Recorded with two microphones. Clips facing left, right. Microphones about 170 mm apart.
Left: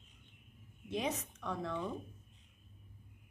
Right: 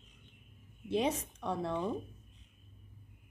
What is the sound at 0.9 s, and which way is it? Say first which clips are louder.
Speech: right 5 dB; 30° right (ahead or behind).